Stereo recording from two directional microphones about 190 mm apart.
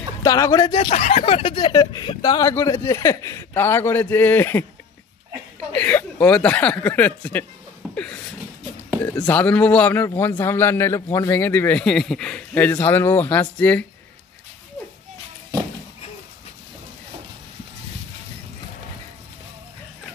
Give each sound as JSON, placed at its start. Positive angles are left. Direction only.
{"t": 0.2, "sound": "a man's voice", "side_deg": 20}
{"t": 5.7, "sound": "speech", "side_deg": 10}
{"t": 7.9, "sound": "a sound", "side_deg": 5}
{"t": 9.0, "sound": "a man's voice", "side_deg": 10}